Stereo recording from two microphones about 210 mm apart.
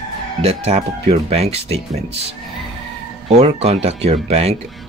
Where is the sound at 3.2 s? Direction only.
30° right (ahead or behind).